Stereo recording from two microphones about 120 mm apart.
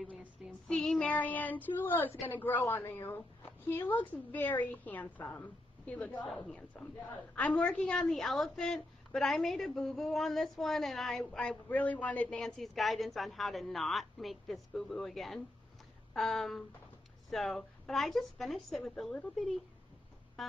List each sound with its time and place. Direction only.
0.7 s a woman's voice: 5° left (ahead or behind)